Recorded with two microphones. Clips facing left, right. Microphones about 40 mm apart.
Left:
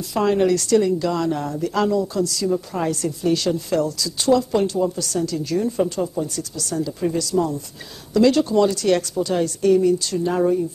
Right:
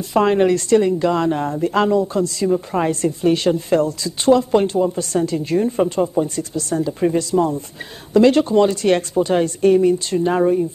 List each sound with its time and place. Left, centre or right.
0.1 s a woman's voice: right